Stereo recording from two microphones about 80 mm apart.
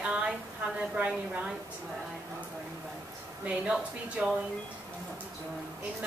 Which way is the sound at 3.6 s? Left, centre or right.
Centre.